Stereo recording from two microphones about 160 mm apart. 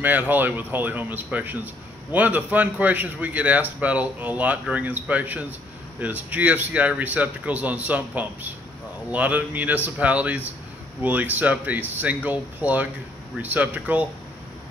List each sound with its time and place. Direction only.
0.0 s speech: 10° right (ahead or behind)